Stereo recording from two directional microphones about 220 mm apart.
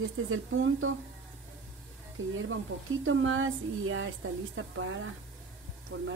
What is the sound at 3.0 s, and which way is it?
Speech, 65° right (ahead or behind).